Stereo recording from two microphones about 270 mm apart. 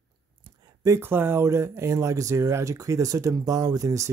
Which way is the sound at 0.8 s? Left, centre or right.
Centre.